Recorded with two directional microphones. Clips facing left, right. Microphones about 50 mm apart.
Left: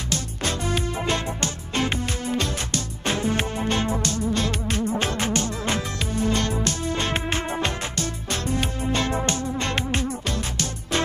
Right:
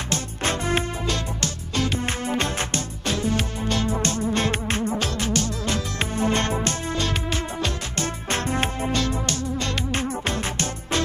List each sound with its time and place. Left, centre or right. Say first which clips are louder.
0.1 s music: right 2 dB; right
1.0 s music: left 2 dB; left
2.3 s music: right 1 dB; right
3.1 s music: left 1 dB; left
4.0 s music: right 1 dB; right
4.9 s music: left 1 dB; left
5.9 s music: right 1 dB; right
7.0 s music: left 1 dB; left
7.9 s music: right 2 dB; right
8.9 s music: left 1 dB; left
9.9 s music: right 1 dB; right